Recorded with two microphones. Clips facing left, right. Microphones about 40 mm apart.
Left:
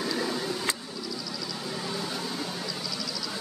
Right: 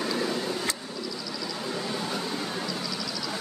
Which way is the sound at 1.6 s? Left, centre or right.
Centre.